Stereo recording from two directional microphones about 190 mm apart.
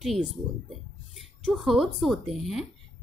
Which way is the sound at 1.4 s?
Centre (ahead or behind).